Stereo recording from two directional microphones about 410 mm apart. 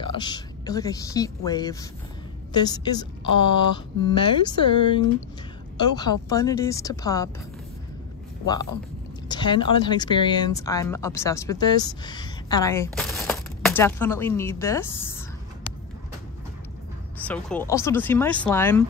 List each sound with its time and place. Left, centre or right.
0.0 s a woman's voice: centre
9.3 s speech: centre
17.3 s speech: centre